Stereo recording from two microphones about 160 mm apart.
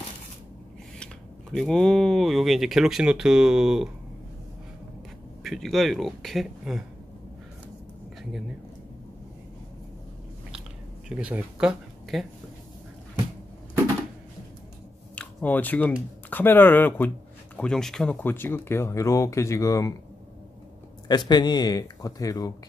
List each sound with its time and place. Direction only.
1.5 s speech: 5° left (ahead or behind)
5.4 s speech: centre (ahead or behind)
11.1 s speech: 5° right (ahead or behind)
15.1 s speech: 10° left (ahead or behind)
21.1 s speech: 25° left (ahead or behind)